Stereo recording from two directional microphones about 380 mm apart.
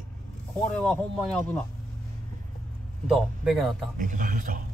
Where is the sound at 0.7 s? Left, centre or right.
Centre.